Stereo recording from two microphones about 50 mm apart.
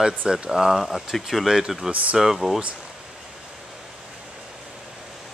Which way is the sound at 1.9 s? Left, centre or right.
Right.